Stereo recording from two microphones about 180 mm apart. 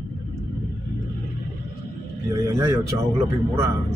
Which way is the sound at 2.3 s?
15° right (ahead or behind).